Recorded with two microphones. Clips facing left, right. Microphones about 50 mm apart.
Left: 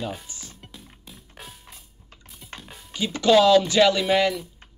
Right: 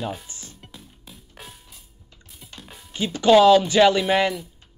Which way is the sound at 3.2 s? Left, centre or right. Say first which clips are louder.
Right 2 dB; centre.